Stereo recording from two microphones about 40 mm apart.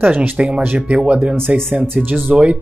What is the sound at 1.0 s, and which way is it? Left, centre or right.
Speech, right.